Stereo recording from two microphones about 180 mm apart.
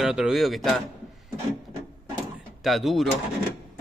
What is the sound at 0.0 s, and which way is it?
Speech, 5° right (ahead or behind).